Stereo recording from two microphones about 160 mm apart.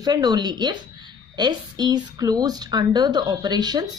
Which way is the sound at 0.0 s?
25° right (ahead or behind).